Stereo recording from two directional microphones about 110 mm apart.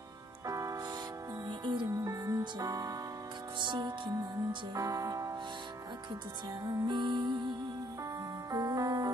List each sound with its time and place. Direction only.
0.5 s music: 30° right (ahead or behind)
1.6 s music: 45° right (ahead or behind)
1.9 s music: 30° right (ahead or behind)
3.5 s music: 45° right (ahead or behind)
4.7 s music: 30° right (ahead or behind)
6.6 s music: 35° right (ahead or behind)
7.0 s music: 45° right (ahead or behind)
8.5 s music: 30° right (ahead or behind)